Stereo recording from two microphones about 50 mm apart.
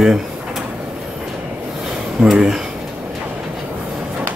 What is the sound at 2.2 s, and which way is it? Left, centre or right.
Speech, right.